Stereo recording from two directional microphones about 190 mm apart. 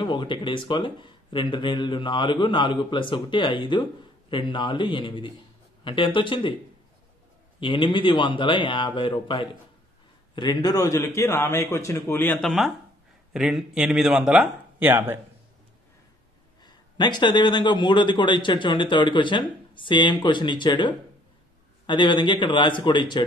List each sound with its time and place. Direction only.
0.0 s a man's voice: 25° left (ahead or behind)
7.6 s a man's voice: 25° left (ahead or behind); by 15.1 s 10° right (ahead or behind)
16.6 s a man's voice: 20° left (ahead or behind)